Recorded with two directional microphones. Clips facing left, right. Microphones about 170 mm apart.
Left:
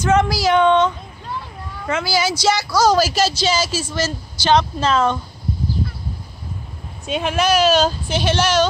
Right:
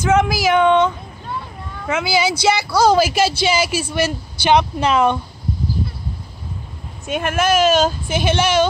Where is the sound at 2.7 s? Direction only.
55° right (ahead or behind).